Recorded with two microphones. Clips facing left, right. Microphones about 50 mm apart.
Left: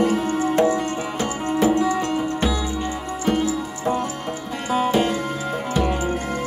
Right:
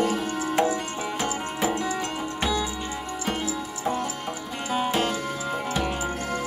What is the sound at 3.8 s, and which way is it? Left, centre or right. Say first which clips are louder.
Music: left 4 dB; left.